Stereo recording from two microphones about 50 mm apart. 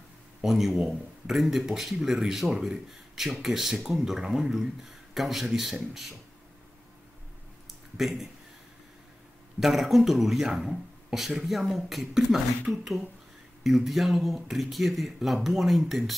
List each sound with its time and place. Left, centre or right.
0.4 s speech: centre
8.0 s speech: centre
9.6 s speech: centre